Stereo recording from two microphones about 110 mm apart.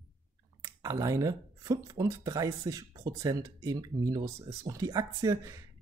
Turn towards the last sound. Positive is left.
turn(degrees=-30)  # may be behind; listen again after turning